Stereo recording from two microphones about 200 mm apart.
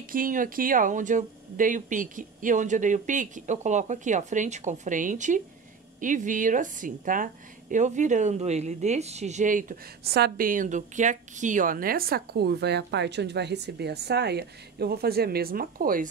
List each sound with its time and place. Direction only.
0.0 s speech: 45° right (ahead or behind)